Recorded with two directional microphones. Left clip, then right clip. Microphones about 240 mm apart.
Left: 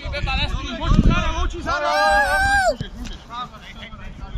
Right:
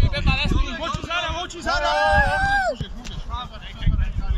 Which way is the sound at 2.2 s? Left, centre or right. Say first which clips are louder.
Left 3 dB; left.